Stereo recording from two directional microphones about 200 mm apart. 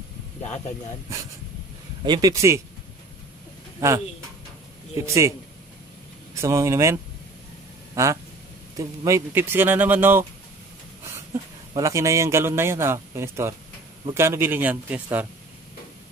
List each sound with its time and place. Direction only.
2.0 s a man's voice: 20° right (ahead or behind)
4.9 s a man's voice: 15° right (ahead or behind)
6.4 s a man's voice: 15° right (ahead or behind)
7.9 s a sound: 15° right (ahead or behind)
8.7 s a man's voice: 15° right (ahead or behind)
11.7 s a man's voice: 15° right (ahead or behind)